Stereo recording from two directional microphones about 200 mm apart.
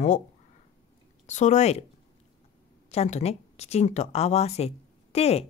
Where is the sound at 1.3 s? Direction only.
35° left (ahead or behind).